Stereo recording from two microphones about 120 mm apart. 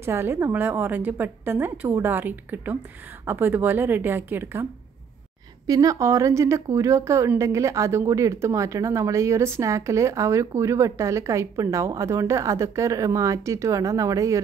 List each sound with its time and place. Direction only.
0.0 s a woman's voice: 20° right (ahead or behind)
5.7 s a woman's voice: 30° right (ahead or behind)